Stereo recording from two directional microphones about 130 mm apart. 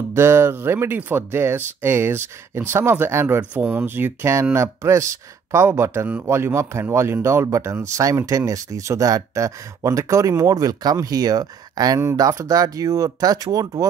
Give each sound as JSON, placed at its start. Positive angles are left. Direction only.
{"t": 0.1, "sound": "speech", "side_deg": -20}